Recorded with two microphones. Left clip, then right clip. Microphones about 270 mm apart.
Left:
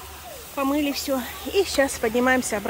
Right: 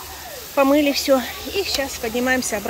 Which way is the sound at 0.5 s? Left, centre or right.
Centre.